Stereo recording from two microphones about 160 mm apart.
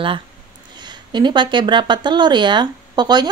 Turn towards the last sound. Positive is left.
turn(degrees=-25)  # may be behind; listen again after turning